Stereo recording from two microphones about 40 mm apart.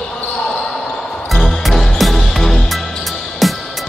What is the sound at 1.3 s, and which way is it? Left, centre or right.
Music, centre.